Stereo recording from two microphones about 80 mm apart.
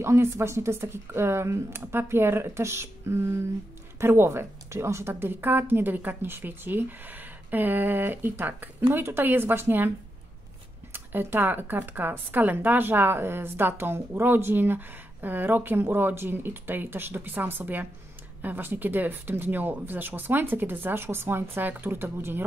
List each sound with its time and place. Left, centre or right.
0.0 s speech: right
10.9 s speech: right